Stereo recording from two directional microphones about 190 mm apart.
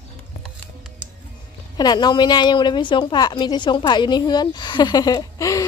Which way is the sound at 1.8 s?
20° left (ahead or behind).